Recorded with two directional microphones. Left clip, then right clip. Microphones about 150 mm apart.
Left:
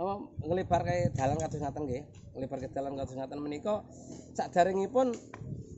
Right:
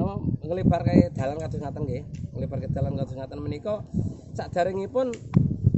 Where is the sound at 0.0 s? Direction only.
20° right (ahead or behind).